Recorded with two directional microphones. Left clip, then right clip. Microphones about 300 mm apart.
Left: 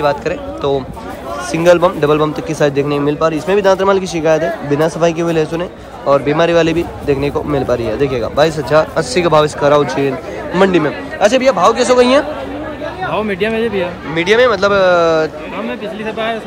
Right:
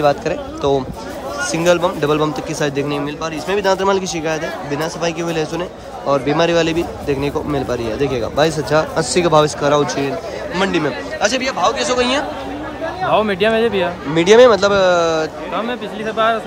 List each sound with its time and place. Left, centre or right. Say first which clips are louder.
0.0 s a man's voice: left 1 dB; centre